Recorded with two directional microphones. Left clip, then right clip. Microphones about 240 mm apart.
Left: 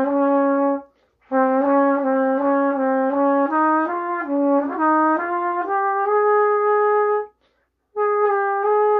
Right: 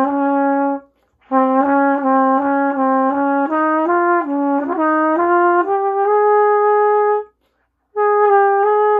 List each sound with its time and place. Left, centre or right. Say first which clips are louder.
0.0 s brass instrument: right 2 dB; right
7.9 s music: right 6 dB; right